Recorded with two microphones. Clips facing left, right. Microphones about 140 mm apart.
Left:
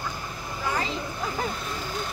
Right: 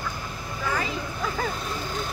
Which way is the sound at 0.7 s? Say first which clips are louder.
Even; 25° left (ahead or behind).